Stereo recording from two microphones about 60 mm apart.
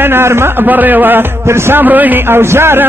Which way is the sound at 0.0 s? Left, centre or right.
Right.